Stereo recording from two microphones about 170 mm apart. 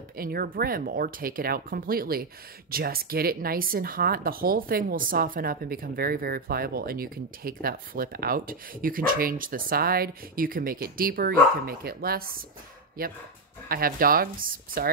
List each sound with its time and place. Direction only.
0.2 s speech: 60° right (ahead or behind)
13.7 s speech: 60° right (ahead or behind)